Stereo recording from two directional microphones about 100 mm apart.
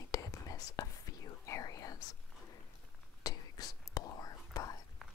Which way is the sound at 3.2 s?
40° left (ahead or behind).